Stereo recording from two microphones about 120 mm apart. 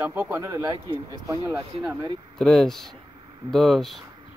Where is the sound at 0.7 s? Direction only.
35° right (ahead or behind).